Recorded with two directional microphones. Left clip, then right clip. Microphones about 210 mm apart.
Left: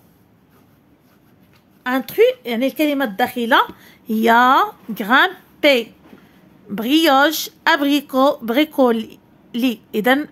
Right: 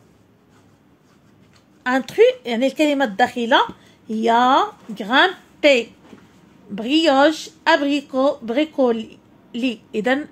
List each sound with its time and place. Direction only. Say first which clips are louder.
1.8 s speech: even; centre (ahead or behind)
3.8 s speech: left 3 dB; 35° left (ahead or behind)